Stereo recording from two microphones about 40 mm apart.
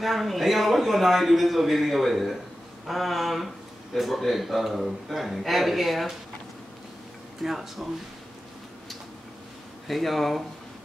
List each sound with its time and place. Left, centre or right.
0.0 s a man's voice: centre
7.4 s speech: centre
9.8 s a man's voice: centre